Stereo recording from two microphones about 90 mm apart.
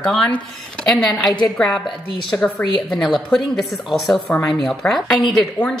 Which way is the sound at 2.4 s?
15° left (ahead or behind).